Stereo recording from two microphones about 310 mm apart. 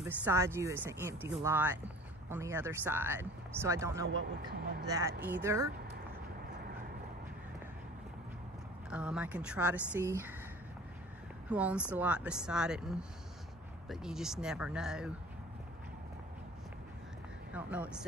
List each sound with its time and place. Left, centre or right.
0.0 s speech: centre
4.6 s speech: right
4.8 s speech: centre
8.9 s a woman's voice: centre
11.4 s a woman's voice: centre
17.5 s speech: centre